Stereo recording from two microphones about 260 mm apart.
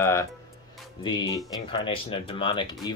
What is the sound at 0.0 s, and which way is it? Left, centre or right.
Speech, centre.